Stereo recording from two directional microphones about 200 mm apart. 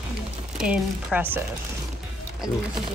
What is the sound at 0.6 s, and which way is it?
Speech, 5° right (ahead or behind).